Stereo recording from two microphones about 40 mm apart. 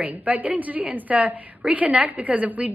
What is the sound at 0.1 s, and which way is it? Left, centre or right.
A woman's voice, right.